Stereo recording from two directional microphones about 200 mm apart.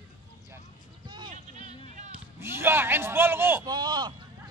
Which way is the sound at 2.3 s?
10° right (ahead or behind).